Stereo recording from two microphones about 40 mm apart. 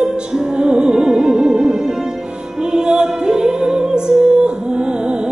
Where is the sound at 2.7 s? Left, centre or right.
Right.